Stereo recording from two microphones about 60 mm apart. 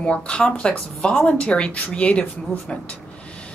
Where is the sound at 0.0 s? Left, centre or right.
Centre.